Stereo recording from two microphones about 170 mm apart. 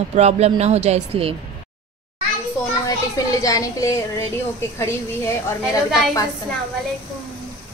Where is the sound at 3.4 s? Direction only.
20° left (ahead or behind).